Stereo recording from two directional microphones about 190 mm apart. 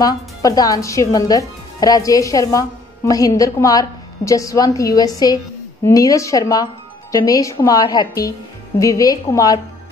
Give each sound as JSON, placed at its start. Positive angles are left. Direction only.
{"t": 0.0, "sound": "a woman's voice", "side_deg": 20}